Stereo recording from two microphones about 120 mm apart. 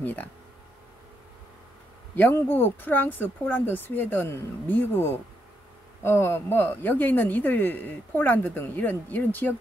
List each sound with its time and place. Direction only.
0.0 s speech: 15° left (ahead or behind)
2.1 s speech: 15° left (ahead or behind)